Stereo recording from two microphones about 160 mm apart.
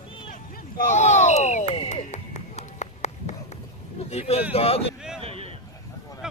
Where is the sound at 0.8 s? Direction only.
45° left (ahead or behind).